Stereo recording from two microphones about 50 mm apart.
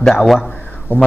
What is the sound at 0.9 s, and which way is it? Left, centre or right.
Speech, right.